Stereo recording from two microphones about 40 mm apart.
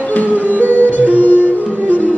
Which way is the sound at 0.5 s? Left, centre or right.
Right.